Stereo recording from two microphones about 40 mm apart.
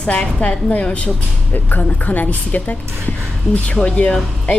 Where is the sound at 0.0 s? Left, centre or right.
Left.